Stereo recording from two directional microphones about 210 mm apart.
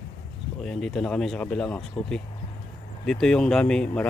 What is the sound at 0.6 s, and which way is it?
Speech, centre (ahead or behind).